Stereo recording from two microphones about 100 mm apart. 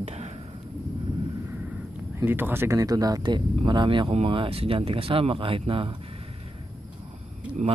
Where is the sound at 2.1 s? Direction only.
20° right (ahead or behind).